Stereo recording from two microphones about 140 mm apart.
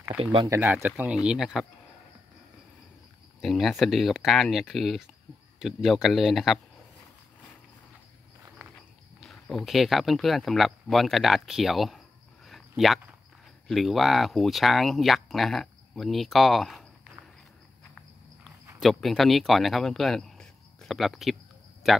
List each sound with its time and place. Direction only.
0.1 s speech: 40° right (ahead or behind)
0.5 s speech: 20° right (ahead or behind)
3.3 s speech: centre (ahead or behind)
9.2 s speech: centre (ahead or behind)
12.4 s a sound: centre (ahead or behind)
13.7 s speech: centre (ahead or behind)
18.8 s speech: centre (ahead or behind)